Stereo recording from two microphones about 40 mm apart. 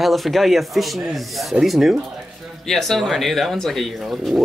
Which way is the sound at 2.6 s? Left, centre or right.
Centre.